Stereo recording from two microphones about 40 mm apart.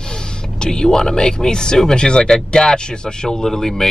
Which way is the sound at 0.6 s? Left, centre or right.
Centre.